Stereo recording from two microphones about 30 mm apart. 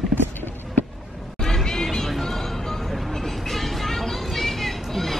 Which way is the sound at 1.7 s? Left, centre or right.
Centre.